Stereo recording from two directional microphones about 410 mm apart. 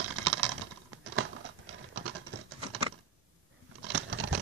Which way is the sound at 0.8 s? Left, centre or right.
Right.